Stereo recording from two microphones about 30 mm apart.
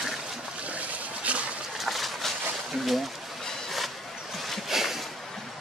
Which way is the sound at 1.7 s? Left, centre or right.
Centre.